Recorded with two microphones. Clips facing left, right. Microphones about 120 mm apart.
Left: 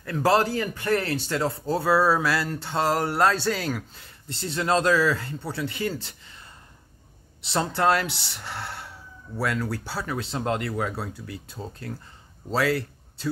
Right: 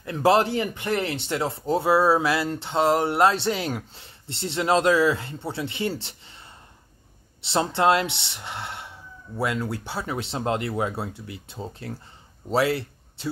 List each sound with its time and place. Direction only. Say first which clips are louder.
0.0 s speech: right 2 dB; 20° right (ahead or behind)
7.4 s speech: right 2 dB; 25° right (ahead or behind)